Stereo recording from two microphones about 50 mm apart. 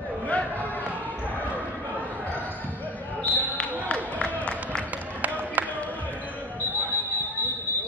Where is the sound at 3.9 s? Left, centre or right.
Left.